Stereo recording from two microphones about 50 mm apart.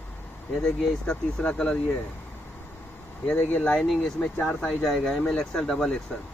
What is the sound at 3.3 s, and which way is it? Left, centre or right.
Speech, left.